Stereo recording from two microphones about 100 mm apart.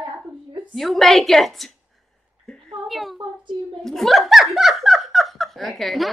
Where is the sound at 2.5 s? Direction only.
5° left (ahead or behind).